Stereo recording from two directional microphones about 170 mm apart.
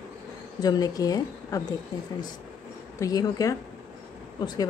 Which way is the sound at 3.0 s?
20° left (ahead or behind).